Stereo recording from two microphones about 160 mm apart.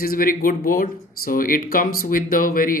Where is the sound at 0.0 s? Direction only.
65° left (ahead or behind).